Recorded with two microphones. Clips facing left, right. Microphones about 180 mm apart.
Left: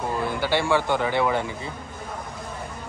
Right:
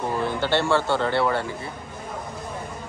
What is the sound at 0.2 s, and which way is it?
A man's voice, 10° left (ahead or behind).